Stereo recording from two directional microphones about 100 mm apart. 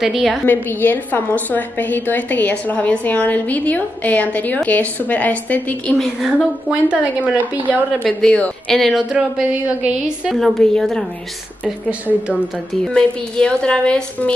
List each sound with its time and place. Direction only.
0.0 s a woman's voice: centre (ahead or behind)
0.5 s a woman's voice: 20° left (ahead or behind)
5.9 s a woman's voice: 5° right (ahead or behind)
8.0 s a woman's voice: 10° left (ahead or behind)
9.1 s a woman's voice: 10° right (ahead or behind); by 11.1 s 5° left (ahead or behind)
11.6 s a woman's voice: 10° right (ahead or behind)
12.8 s a woman's voice: 10° left (ahead or behind)